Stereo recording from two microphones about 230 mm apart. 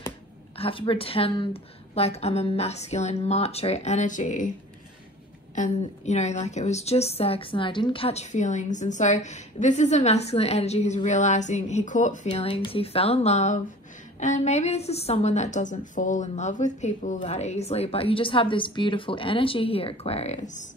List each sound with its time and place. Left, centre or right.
0.6 s a woman's voice: left
5.5 s a woman's voice: left